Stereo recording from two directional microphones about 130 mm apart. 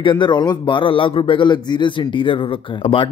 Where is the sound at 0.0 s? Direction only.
40° left (ahead or behind).